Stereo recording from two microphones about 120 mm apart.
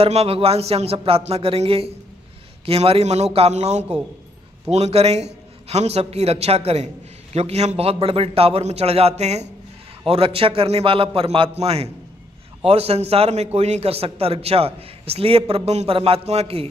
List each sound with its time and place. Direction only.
0.0 s a man's voice: 60° right (ahead or behind)
10.0 s a man's voice: 55° right (ahead or behind)